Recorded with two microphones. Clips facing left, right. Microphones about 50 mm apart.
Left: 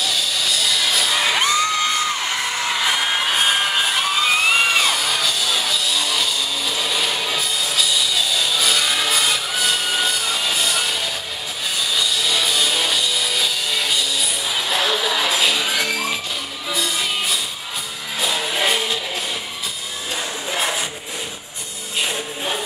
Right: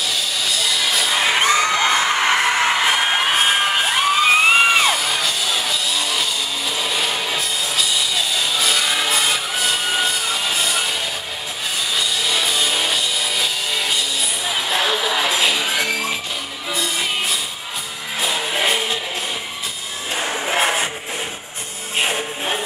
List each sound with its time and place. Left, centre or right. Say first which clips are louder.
0.0 s music: even; centre
1.9 s music: right 5 dB; right; by 16.2 s centre
16.7 s music: even; right
18.2 s music: even; centre
20.2 s music: right 5 dB; right
21.9 s music: right 3 dB; right